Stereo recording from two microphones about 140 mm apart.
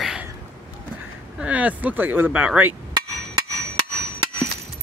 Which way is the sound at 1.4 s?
10° right (ahead or behind).